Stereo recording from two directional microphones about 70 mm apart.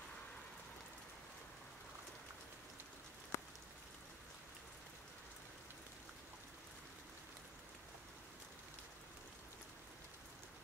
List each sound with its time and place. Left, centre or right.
3.3 s rain on surface: left